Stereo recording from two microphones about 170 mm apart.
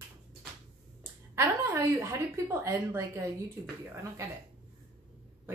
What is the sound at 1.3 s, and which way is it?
A woman's voice, 15° right (ahead or behind).